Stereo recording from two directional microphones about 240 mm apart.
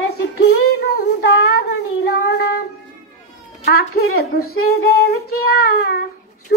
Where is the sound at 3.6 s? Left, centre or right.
Left.